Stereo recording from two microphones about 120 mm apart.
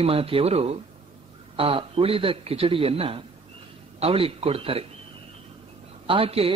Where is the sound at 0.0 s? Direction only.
55° right (ahead or behind).